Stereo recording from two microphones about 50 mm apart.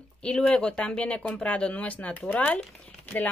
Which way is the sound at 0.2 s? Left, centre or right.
Left.